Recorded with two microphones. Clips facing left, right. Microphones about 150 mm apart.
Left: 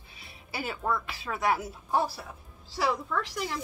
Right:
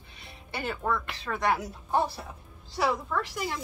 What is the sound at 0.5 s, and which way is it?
Speech, 5° left (ahead or behind).